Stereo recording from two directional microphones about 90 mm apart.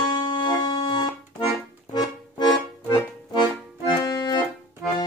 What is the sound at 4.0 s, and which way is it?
Accordion, 50° left (ahead or behind).